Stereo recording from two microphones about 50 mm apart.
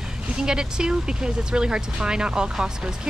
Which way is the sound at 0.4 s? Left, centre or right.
Centre.